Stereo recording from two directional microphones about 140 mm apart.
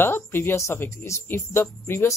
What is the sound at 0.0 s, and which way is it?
Speech, 15° left (ahead or behind).